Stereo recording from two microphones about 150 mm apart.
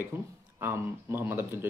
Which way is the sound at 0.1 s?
20° right (ahead or behind).